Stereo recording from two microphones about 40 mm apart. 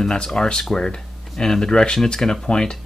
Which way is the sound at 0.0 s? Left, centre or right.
Centre.